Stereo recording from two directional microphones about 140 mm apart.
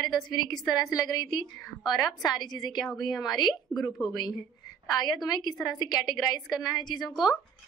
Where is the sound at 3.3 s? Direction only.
30° left (ahead or behind).